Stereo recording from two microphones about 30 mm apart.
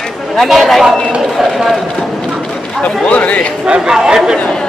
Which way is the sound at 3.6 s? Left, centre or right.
Right.